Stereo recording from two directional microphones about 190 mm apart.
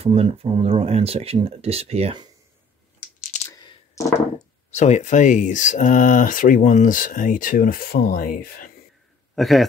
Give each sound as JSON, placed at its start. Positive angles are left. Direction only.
{"t": 0.0, "sound": "speech", "side_deg": -30}
{"t": 3.4, "sound": "a sound", "side_deg": 15}
{"t": 4.7, "sound": "speech", "side_deg": 40}
{"t": 9.3, "sound": "a man's voice", "side_deg": 0}